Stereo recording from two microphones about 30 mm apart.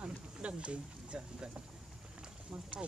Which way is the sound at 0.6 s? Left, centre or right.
Right.